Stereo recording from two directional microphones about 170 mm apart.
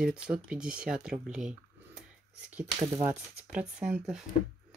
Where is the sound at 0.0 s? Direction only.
5° right (ahead or behind).